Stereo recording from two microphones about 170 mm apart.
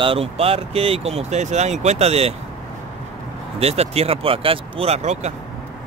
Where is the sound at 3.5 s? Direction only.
35° right (ahead or behind).